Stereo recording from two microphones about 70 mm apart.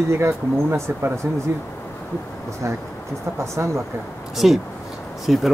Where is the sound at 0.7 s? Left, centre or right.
Right.